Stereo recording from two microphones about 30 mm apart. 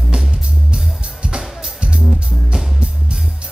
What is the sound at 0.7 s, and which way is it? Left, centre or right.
Music, right.